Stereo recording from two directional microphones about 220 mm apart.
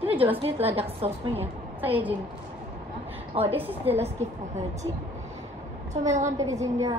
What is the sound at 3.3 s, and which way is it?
A woman's voice, 25° right (ahead or behind).